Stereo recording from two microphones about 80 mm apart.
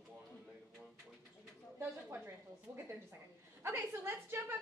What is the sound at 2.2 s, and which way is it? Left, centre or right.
A woman's voice, right.